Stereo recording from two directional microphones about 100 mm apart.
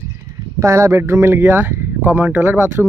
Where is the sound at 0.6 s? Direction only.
30° right (ahead or behind).